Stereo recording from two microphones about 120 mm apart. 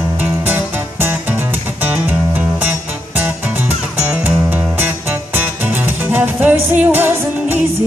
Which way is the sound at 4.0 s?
15° right (ahead or behind).